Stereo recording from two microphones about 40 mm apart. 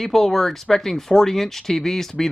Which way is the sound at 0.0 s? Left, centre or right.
Centre.